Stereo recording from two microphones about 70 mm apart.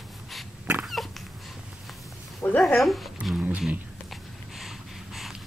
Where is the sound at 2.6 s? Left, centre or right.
Centre.